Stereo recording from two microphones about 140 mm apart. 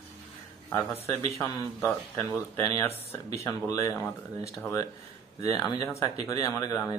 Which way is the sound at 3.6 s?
25° left (ahead or behind).